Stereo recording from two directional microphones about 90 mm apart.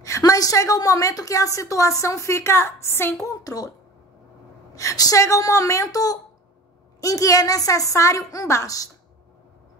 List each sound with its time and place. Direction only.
0.2 s a woman's voice: 40° left (ahead or behind)
4.7 s a woman's voice: 40° left (ahead or behind)